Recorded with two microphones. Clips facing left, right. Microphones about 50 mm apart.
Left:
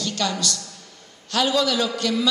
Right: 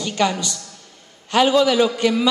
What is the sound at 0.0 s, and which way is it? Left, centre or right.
A woman's voice, right.